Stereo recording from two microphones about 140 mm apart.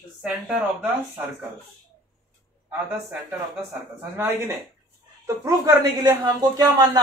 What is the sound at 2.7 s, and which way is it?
Speech, 15° right (ahead or behind).